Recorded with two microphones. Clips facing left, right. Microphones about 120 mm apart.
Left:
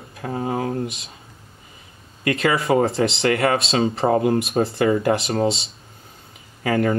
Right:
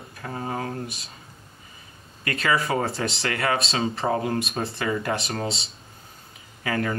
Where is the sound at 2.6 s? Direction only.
25° left (ahead or behind).